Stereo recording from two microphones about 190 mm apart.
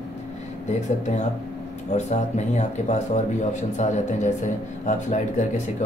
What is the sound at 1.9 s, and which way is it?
Speech, 35° left (ahead or behind).